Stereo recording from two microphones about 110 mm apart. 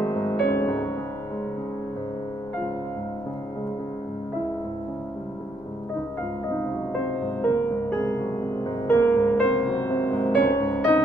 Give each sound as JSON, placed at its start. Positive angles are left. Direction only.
{"t": 0.0, "sound": "music", "side_deg": 15}
{"t": 7.2, "sound": "music", "side_deg": 20}